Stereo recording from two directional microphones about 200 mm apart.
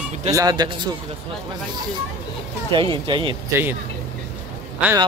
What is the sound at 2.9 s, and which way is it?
Speech, 25° right (ahead or behind).